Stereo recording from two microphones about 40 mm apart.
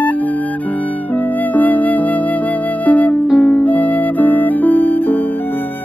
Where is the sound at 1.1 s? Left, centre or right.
Left.